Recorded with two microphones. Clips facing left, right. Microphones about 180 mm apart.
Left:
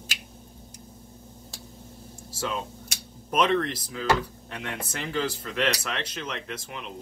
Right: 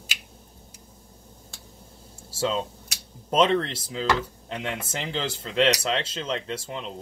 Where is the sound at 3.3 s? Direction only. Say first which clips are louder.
Right 2 dB; 25° right (ahead or behind).